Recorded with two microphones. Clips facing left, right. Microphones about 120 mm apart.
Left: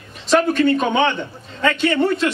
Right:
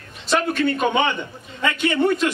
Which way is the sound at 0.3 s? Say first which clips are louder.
Left 5 dB; centre (ahead or behind).